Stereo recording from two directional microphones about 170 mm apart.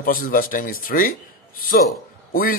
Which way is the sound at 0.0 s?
55° left (ahead or behind).